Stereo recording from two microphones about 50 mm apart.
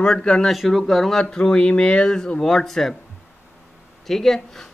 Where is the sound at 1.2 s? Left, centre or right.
Centre.